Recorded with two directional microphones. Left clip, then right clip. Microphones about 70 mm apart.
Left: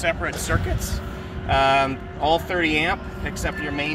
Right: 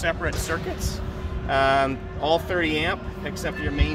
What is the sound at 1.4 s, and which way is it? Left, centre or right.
Speech, right.